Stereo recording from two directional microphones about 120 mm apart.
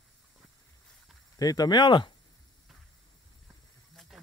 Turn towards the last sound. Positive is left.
turn(degrees=0)  # may be behind; listen again after turning